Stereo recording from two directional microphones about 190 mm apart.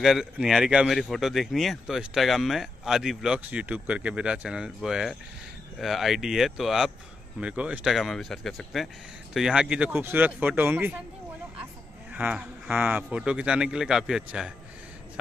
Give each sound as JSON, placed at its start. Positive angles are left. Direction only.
{"t": 0.0, "sound": "speech", "side_deg": 0}
{"t": 12.1, "sound": "speech", "side_deg": -5}